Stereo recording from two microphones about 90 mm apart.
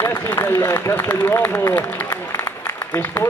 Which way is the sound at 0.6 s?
30° left (ahead or behind).